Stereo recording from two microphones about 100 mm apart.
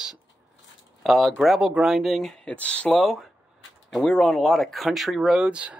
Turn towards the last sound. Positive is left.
turn(degrees=-10)  # may be behind; listen again after turning